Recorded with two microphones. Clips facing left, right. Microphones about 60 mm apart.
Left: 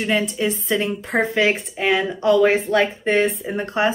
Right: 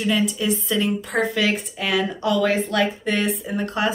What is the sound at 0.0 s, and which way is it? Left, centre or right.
A woman's voice, left.